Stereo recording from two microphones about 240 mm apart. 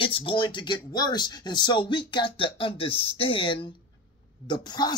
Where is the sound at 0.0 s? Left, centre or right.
Left.